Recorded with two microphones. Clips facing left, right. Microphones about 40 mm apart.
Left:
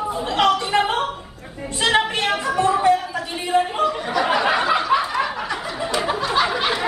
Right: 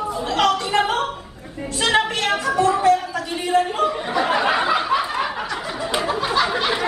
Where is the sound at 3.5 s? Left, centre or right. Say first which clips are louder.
Even; centre.